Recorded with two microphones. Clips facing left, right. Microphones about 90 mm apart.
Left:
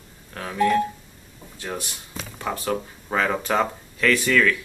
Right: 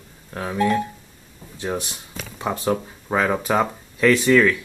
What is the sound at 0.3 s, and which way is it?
Speech, 15° right (ahead or behind).